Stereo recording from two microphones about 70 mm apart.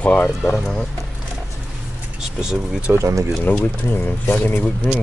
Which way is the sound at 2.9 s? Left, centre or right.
Right.